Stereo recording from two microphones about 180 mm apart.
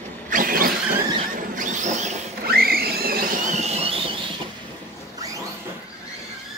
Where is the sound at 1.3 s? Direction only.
45° right (ahead or behind).